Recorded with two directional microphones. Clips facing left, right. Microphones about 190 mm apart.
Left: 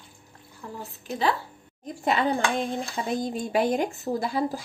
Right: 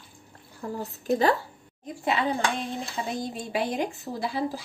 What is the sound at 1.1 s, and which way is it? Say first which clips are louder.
Speech: right 4 dB; 45° right (ahead or behind).